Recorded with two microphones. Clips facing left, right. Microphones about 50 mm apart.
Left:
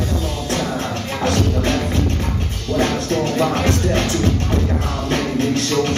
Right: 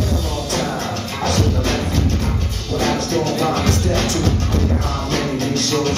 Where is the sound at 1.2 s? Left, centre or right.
Left.